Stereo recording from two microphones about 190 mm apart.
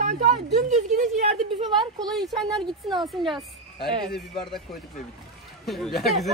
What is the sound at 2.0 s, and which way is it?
Speech, 20° right (ahead or behind).